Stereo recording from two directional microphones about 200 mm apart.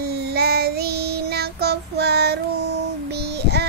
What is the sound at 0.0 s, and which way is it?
Child singing, 55° right (ahead or behind).